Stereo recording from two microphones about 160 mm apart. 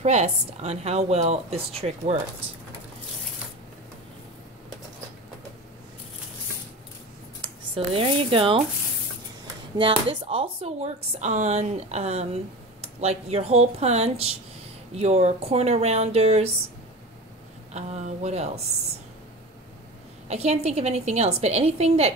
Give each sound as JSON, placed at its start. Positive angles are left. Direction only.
{"t": 0.0, "sound": "a woman's voice", "side_deg": -45}
{"t": 7.4, "sound": "speech", "side_deg": -35}
{"t": 9.8, "sound": "speech", "side_deg": -35}
{"t": 17.7, "sound": "a woman's voice", "side_deg": -45}
{"t": 20.2, "sound": "speech", "side_deg": -40}